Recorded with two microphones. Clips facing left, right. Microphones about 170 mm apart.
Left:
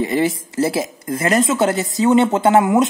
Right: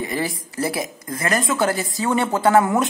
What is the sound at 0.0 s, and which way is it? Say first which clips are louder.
Speech: left 7 dB; 25° left (ahead or behind).